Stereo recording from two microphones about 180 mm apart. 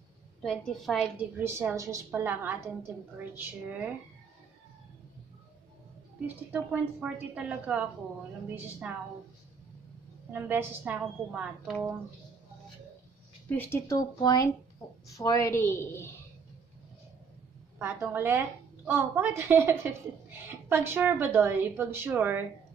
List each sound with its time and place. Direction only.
0.4 s a woman's voice: 5° left (ahead or behind)
1.4 s a woman's voice: 15° right (ahead or behind)
6.2 s a woman's voice: 10° right (ahead or behind)
10.3 s a woman's voice: 10° right (ahead or behind)
13.5 s a woman's voice: 10° left (ahead or behind)
17.7 s a woman's voice: 15° right (ahead or behind)